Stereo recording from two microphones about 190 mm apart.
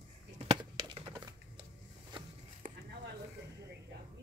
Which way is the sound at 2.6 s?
45° right (ahead or behind).